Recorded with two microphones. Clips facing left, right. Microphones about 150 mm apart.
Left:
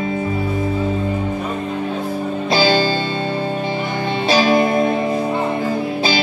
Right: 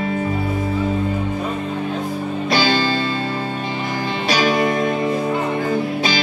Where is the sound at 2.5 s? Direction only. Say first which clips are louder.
Left 3 dB; 25° left (ahead or behind).